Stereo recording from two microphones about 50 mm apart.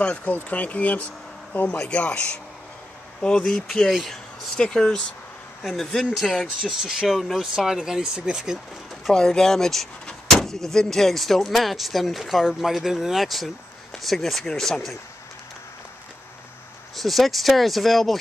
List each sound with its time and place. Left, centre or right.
0.0 s speech: left; by 3.9 s centre
3.9 s speech: centre
4.6 s speech: centre
5.6 s speech: centre
6.4 s speech: centre
7.2 s speech: centre
7.5 s speech: centre
9.1 s speech: centre
16.9 s speech: centre